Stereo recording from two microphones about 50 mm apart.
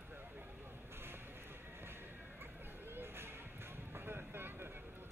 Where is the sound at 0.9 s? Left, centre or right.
Right.